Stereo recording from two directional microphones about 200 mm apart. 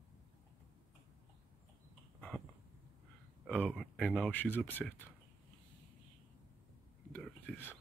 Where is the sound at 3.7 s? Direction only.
Centre (ahead or behind).